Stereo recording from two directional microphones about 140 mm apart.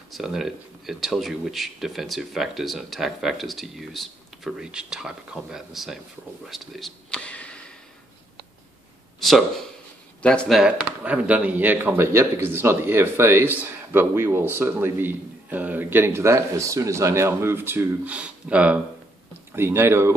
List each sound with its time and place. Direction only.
0.1 s speech: centre (ahead or behind)
10.2 s speech: 5° left (ahead or behind)
11.1 s speech: 10° right (ahead or behind)